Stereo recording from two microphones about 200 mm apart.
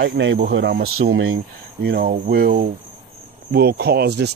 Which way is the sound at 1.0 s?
80° right.